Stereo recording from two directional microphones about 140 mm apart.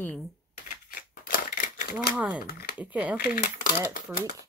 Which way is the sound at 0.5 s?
90° left.